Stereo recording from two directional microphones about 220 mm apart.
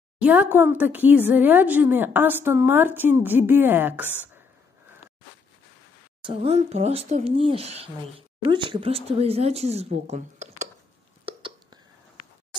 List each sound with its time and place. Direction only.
0.2 s speech: 5° right (ahead or behind)
6.2 s speech: 25° right (ahead or behind)
11.2 s hiccup: 25° right (ahead or behind)